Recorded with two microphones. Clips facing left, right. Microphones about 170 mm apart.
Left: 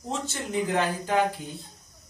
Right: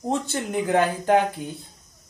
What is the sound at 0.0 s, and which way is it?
Speech, 60° right (ahead or behind).